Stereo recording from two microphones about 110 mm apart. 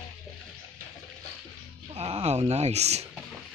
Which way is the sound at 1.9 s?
65° right (ahead or behind).